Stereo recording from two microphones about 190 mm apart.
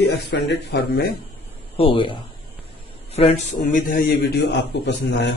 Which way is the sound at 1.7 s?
30° left (ahead or behind).